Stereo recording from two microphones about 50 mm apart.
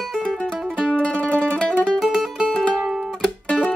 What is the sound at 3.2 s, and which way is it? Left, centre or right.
Music, left.